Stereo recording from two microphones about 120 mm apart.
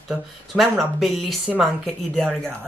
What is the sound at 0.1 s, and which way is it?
Speech, centre (ahead or behind).